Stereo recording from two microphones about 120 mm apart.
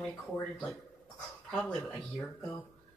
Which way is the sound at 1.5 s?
5° left (ahead or behind).